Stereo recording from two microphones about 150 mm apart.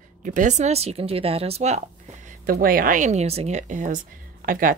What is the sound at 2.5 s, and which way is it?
Speech, 75° right (ahead or behind).